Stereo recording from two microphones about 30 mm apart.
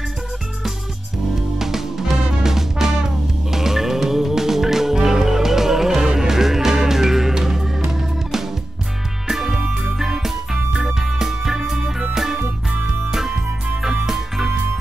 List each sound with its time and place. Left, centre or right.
1.6 s music: centre